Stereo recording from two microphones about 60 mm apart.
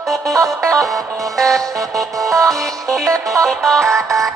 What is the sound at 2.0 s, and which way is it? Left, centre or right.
Music, right.